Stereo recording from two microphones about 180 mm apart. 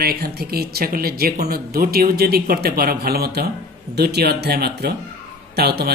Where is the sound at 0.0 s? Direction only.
60° right (ahead or behind).